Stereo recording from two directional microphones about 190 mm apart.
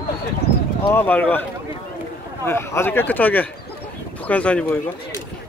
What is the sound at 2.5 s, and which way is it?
Speech, 15° left (ahead or behind).